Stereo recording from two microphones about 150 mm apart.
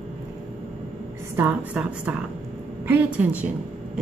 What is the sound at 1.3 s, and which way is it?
A woman's voice, 10° right (ahead or behind).